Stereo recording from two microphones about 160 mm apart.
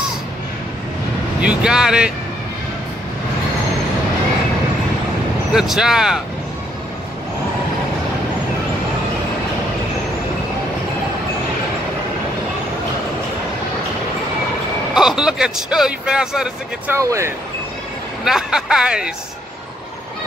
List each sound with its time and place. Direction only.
1.4 s speech: 5° right (ahead or behind)
5.5 s speech: centre (ahead or behind)
15.0 s speech: 5° right (ahead or behind)
16.9 s speech: 20° right (ahead or behind)
18.2 s speech: 5° right (ahead or behind)